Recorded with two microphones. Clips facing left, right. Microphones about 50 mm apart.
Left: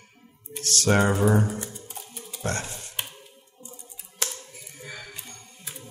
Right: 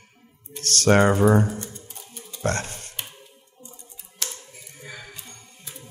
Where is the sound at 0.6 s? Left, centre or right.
Right.